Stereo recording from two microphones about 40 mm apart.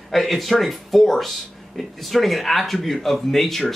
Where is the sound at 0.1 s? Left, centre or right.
Centre.